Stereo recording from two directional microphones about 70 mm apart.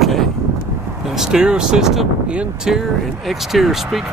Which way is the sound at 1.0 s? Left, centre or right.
Centre.